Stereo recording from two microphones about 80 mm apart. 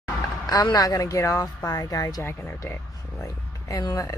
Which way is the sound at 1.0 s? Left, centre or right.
Left.